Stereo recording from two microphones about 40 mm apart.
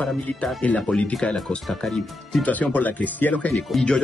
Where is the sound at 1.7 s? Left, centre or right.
Centre.